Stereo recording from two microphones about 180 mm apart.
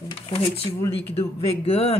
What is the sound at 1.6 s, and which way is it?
Speech, 35° left (ahead or behind).